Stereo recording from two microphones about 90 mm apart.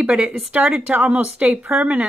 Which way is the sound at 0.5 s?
15° right (ahead or behind).